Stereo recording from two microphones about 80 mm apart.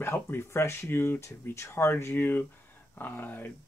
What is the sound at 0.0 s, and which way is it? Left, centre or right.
Speech, left.